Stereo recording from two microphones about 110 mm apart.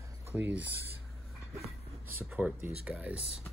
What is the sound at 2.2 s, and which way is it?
Speech, 15° right (ahead or behind).